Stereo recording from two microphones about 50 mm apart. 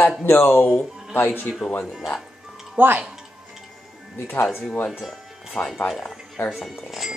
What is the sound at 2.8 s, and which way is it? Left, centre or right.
Speech, right.